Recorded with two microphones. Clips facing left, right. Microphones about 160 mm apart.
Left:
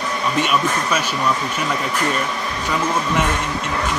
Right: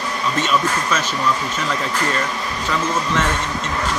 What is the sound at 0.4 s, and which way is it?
Speech, 10° left (ahead or behind).